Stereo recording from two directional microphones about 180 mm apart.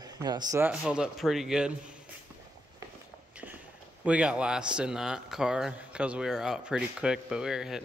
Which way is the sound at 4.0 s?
5° right (ahead or behind).